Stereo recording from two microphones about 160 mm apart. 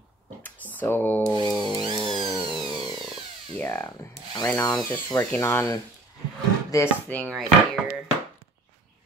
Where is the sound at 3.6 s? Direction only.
10° left (ahead or behind).